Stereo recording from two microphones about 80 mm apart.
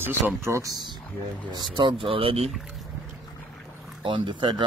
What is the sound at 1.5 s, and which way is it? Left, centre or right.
Speech, right.